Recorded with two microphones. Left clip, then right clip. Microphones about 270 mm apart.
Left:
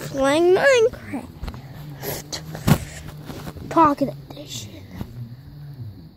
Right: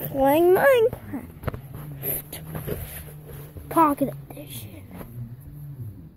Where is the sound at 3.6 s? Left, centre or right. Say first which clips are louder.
Left 3 dB; centre.